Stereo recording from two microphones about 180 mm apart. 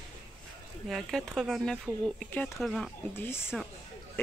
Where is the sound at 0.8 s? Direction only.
Centre (ahead or behind).